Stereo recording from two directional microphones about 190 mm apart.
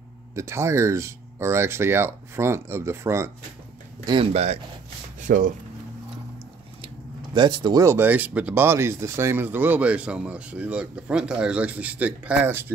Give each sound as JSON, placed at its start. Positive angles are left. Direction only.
{"t": 0.4, "sound": "speech", "side_deg": -15}
{"t": 4.0, "sound": "speech", "side_deg": -25}
{"t": 5.2, "sound": "speech", "side_deg": -45}
{"t": 7.3, "sound": "speech", "side_deg": -25}